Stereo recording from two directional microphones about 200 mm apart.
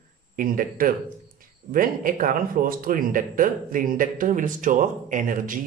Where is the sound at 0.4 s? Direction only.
45° right (ahead or behind).